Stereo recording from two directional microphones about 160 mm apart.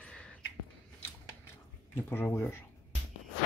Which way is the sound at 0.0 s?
5° left (ahead or behind).